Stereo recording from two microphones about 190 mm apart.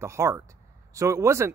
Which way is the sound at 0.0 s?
15° right (ahead or behind).